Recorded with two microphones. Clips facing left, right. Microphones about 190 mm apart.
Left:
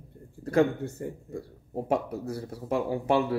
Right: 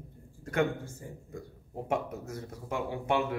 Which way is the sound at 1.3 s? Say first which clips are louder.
Left 6 dB; 30° left (ahead or behind).